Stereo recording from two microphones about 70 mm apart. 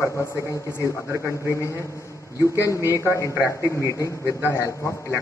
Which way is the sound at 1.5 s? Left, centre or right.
Left.